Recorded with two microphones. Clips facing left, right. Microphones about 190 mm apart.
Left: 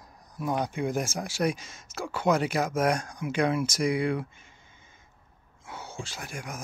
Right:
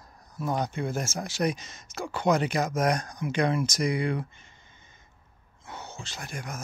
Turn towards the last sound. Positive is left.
turn(degrees=10)  # may be behind; listen again after turning